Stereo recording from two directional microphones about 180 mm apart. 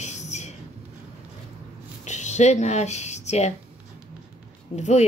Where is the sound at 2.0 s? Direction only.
40° left (ahead or behind).